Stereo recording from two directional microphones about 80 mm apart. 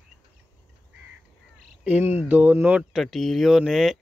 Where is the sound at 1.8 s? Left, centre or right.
Right.